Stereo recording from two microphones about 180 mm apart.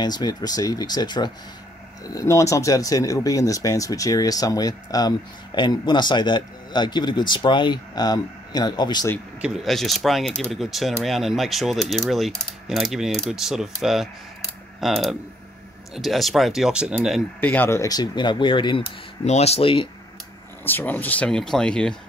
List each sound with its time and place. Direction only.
0.0 s speech: 25° left (ahead or behind)
9.4 s speech: centre (ahead or behind)
17.4 s speech: 10° left (ahead or behind); by 18.9 s 25° left (ahead or behind)
19.2 s speech: 35° left (ahead or behind)
20.6 s speech: 10° left (ahead or behind)